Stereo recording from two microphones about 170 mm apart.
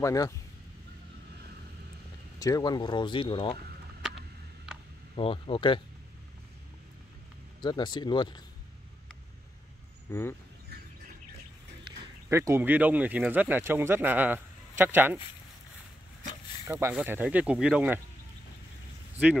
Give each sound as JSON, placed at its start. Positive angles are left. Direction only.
{"t": 0.0, "sound": "speech", "side_deg": 20}
{"t": 2.3, "sound": "speech", "side_deg": 20}
{"t": 5.1, "sound": "speech", "side_deg": 30}
{"t": 7.6, "sound": "speech", "side_deg": 25}
{"t": 10.1, "sound": "speech", "side_deg": 15}
{"t": 12.3, "sound": "speech", "side_deg": -15}
{"t": 16.6, "sound": "speech", "side_deg": -15}